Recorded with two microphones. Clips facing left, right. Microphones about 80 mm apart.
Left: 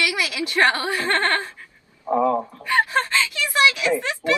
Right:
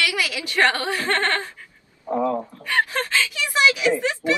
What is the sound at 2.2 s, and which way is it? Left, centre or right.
Speech, left.